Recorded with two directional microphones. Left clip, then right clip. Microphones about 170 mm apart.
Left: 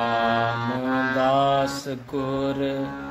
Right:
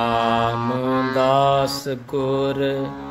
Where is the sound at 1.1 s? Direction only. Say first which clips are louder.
Right 4 dB; 40° right (ahead or behind).